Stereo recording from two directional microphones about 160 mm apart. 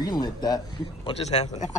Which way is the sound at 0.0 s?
25° left (ahead or behind).